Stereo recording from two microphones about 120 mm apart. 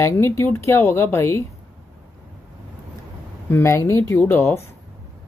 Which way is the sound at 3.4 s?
20° left (ahead or behind).